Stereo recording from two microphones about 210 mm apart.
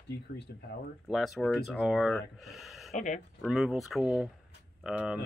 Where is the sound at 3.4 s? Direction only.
Centre (ahead or behind).